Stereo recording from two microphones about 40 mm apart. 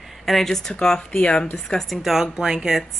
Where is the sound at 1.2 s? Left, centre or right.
Left.